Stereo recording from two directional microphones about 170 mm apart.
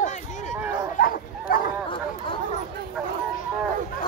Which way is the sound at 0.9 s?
55° left (ahead or behind).